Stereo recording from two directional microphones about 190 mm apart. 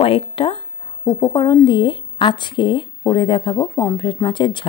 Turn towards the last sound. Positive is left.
turn(degrees=25)  # may be behind; listen again after turning